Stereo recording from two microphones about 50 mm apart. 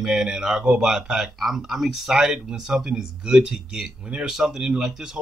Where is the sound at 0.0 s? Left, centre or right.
Centre.